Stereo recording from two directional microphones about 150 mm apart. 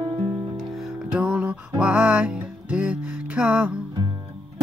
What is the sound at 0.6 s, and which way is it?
Music, 5° right (ahead or behind).